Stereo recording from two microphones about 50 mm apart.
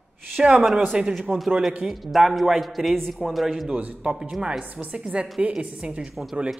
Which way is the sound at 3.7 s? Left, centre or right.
Right.